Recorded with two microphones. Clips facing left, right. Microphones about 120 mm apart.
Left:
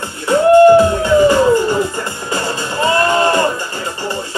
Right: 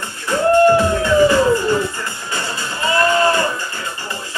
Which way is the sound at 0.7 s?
30° left (ahead or behind).